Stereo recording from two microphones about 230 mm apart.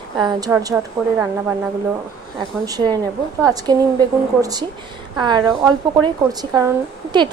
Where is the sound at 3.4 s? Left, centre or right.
Centre.